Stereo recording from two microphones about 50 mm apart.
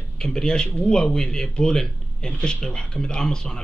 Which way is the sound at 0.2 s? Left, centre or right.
Centre.